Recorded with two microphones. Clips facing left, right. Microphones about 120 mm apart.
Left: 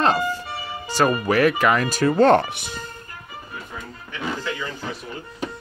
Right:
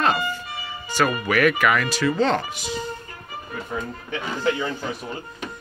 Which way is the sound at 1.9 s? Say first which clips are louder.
Left 5 dB; 50° left (ahead or behind).